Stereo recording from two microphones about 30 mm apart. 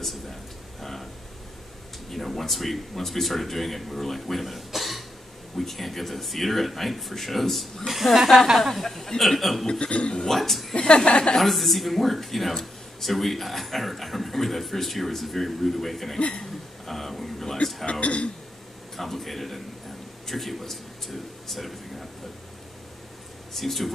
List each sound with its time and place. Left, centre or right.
0.0 s a sound: centre
2.0 s speech: centre
9.7 s a man's voice: left
10.2 s speech: centre
10.7 s a woman's voice: left
11.3 s speech: centre
16.8 s a sound: centre
18.0 s a man's voice: left
18.9 s a man's voice: centre
23.5 s speech: centre